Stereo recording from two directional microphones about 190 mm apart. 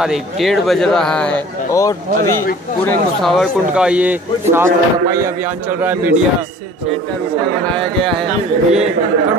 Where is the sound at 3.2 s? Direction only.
Centre (ahead or behind).